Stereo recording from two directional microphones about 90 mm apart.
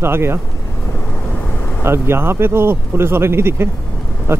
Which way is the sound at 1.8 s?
25° right (ahead or behind).